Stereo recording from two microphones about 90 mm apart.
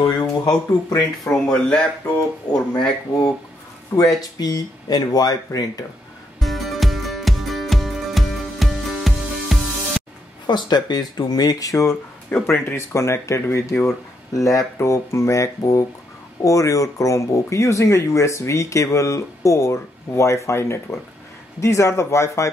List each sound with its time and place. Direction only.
0.0 s speech: 50° left (ahead or behind)
1.2 s speech: 10° left (ahead or behind)
4.2 s speech: 45° left (ahead or behind)
6.4 s music: centre (ahead or behind)
10.4 s speech: 55° left (ahead or behind); by 11.9 s 40° left (ahead or behind)
12.3 s speech: 25° left (ahead or behind)